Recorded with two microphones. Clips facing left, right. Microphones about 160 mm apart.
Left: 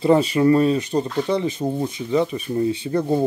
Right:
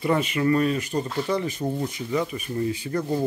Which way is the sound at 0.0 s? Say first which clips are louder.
Left 7 dB; 30° left (ahead or behind).